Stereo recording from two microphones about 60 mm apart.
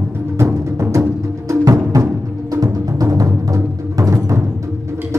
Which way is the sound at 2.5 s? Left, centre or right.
Right.